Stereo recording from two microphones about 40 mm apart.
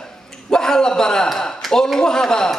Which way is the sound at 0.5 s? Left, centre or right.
Centre.